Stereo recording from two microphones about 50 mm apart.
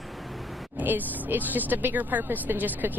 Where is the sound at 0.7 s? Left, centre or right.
Right.